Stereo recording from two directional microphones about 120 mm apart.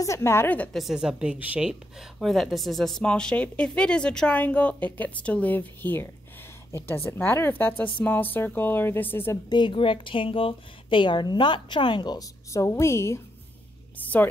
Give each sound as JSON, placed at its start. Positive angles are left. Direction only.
{"t": 0.0, "sound": "a woman's voice", "side_deg": 25}
{"t": 0.7, "sound": "a woman's voice", "side_deg": -5}
{"t": 7.1, "sound": "a woman's voice", "side_deg": 20}
{"t": 9.5, "sound": "speech", "side_deg": 40}
{"t": 12.5, "sound": "a woman's voice", "side_deg": 25}
{"t": 13.9, "sound": "a sound", "side_deg": 15}